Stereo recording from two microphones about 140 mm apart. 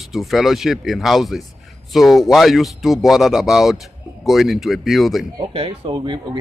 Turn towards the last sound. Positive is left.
turn(degrees=-35)  # may be behind; listen again after turning